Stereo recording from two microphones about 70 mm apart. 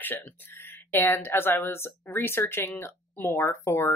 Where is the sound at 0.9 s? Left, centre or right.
Left.